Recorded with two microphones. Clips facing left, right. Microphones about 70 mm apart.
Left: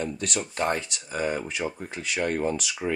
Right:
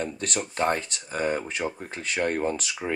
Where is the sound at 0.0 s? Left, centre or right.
Right.